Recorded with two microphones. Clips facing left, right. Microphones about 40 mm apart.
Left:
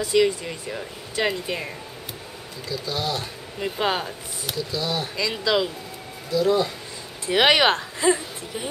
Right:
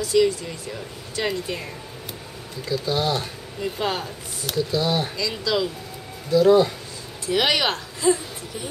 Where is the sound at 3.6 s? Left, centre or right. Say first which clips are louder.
Left 1 dB; centre.